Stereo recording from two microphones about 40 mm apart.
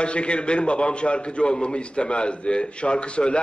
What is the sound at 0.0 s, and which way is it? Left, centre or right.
A man's voice, left.